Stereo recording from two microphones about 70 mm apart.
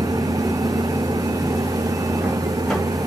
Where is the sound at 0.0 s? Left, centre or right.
Right.